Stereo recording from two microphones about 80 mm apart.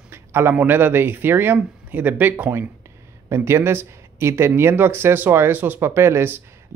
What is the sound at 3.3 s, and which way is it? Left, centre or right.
Speech, right.